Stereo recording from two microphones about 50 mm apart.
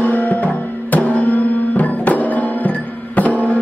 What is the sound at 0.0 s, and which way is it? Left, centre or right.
Music, left.